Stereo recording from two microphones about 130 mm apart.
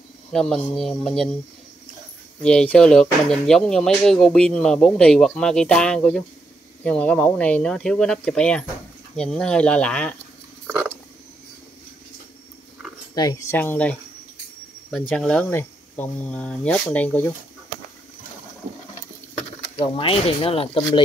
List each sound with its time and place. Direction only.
0.3 s speech: 5° left (ahead or behind)
2.4 s speech: 10° left (ahead or behind)
13.1 s speech: 30° left (ahead or behind)
13.6 s speech: 10° left (ahead or behind)
19.8 s speech: 45° left (ahead or behind)